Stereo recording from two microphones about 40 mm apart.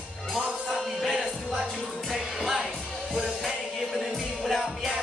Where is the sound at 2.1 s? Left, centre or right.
Centre.